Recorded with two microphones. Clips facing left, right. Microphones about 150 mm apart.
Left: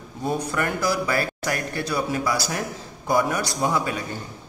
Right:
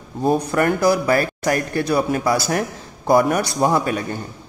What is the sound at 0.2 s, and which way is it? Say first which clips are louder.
A man's voice: right 7 dB; 50° right (ahead or behind).